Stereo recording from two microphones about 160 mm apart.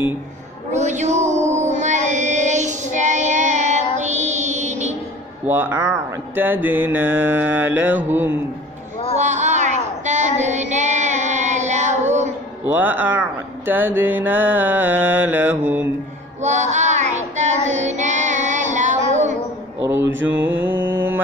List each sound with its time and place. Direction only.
0.7 s music: 45° right (ahead or behind)
5.5 s mantra: 15° right (ahead or behind)
9.1 s child singing: 45° right (ahead or behind)
12.6 s mantra: 10° right (ahead or behind)
16.4 s child singing: 45° right (ahead or behind)
19.8 s mantra: 15° right (ahead or behind)